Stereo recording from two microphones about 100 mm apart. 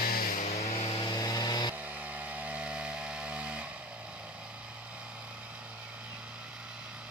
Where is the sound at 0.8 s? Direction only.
45° left (ahead or behind).